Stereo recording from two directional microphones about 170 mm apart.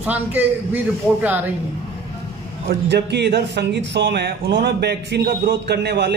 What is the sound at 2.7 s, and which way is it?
A man's voice, 75° right (ahead or behind).